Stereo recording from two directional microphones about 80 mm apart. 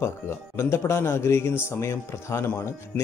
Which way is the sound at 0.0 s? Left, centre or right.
Left.